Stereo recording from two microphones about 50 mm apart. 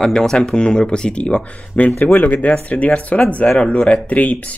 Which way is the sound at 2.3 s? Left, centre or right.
Left.